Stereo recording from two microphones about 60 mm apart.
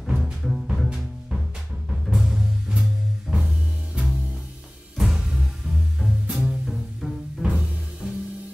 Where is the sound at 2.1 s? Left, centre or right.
Centre.